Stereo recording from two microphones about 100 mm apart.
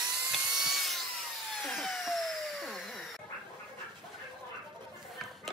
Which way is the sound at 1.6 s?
5° left (ahead or behind).